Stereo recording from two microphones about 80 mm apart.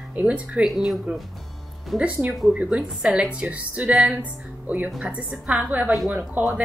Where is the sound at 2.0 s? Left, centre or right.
Centre.